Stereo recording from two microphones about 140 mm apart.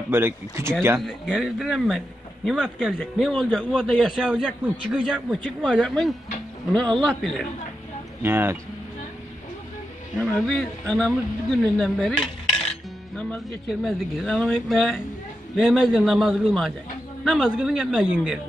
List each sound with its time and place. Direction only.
0.1 s speech: 20° right (ahead or behind)
1.0 s a man's voice: centre (ahead or behind)
8.2 s speech: 15° right (ahead or behind)
10.1 s a man's voice: 5° left (ahead or behind)
11.8 s dishes: centre (ahead or behind)
13.8 s a man's voice: centre (ahead or behind)